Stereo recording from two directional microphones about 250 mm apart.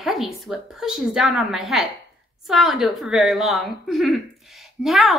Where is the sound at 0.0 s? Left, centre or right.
Centre.